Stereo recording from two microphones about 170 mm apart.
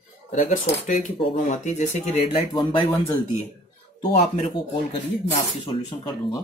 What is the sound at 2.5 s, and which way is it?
Speech, 30° left (ahead or behind).